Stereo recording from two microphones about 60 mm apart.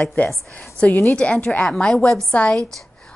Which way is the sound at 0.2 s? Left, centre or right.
Left.